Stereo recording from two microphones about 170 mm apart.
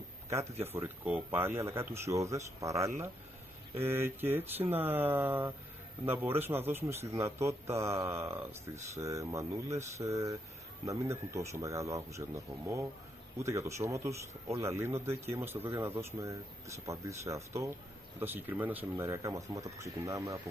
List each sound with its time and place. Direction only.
0.7 s speech: 10° right (ahead or behind)